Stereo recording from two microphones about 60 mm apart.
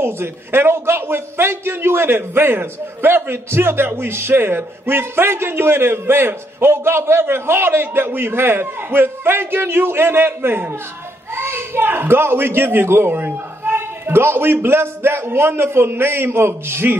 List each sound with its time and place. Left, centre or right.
0.0 s a man's voice: right